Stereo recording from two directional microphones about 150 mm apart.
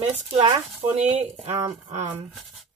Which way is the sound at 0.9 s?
45° right (ahead or behind).